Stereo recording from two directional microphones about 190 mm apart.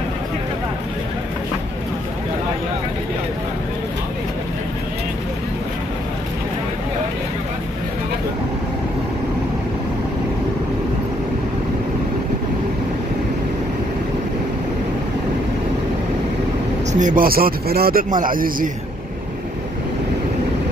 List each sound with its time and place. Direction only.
16.9 s speech: 45° right (ahead or behind)